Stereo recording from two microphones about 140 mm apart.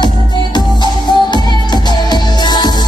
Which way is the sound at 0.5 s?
30° left (ahead or behind).